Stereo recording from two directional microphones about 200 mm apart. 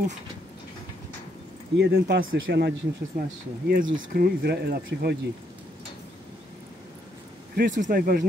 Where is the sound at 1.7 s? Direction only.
55° right (ahead or behind).